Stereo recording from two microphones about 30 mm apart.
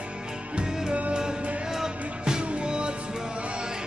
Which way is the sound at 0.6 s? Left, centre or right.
Right.